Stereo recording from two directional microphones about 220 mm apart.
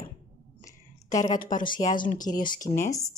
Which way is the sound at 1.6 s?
40° left (ahead or behind).